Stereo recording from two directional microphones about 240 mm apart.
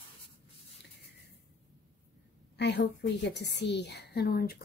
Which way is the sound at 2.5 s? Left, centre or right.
Left.